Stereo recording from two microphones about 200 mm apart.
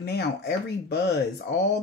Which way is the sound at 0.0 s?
55° left (ahead or behind).